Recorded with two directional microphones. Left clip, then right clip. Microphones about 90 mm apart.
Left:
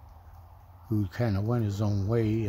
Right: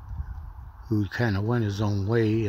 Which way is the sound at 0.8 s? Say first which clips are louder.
Right 4 dB; 15° right (ahead or behind).